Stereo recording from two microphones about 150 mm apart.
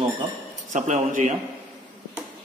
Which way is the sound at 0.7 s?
55° right (ahead or behind).